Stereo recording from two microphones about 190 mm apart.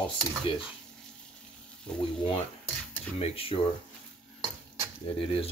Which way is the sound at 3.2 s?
30° left (ahead or behind).